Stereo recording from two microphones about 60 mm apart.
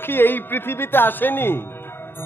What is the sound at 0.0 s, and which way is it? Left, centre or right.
A man's voice, left.